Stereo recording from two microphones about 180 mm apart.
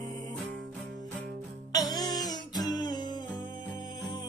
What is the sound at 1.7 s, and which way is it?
Music, 20° left (ahead or behind).